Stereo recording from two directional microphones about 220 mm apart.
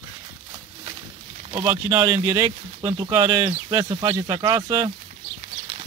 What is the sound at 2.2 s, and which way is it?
Speech, 15° right (ahead or behind).